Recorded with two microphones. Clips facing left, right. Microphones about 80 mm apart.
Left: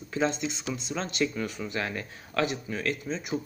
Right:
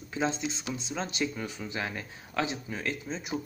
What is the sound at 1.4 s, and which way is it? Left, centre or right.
Speech, left.